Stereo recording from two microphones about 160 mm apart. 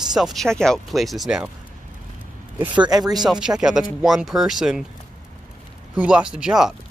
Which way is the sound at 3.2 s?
5° right (ahead or behind).